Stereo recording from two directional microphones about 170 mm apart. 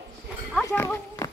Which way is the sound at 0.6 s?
15° left (ahead or behind).